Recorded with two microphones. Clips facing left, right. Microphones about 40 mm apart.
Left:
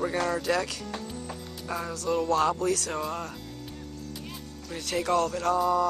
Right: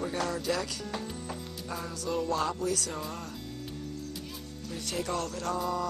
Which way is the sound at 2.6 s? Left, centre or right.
Left.